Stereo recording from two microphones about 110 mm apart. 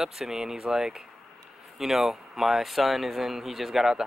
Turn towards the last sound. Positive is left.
turn(degrees=-5)  # may be behind; listen again after turning